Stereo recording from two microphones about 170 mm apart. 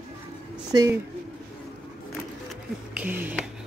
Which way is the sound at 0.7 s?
20° right (ahead or behind).